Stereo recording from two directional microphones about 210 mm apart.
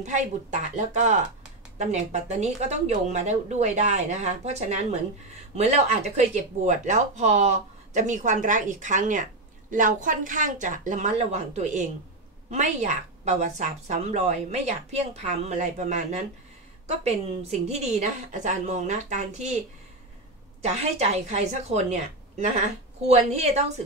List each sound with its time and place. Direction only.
0.0 s speech: 35° right (ahead or behind)
20.6 s speech: 30° right (ahead or behind)